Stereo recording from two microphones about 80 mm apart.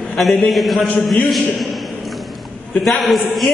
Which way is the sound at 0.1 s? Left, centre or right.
Centre.